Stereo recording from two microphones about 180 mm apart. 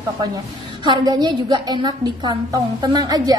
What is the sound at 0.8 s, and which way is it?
A woman's voice, 20° right (ahead or behind).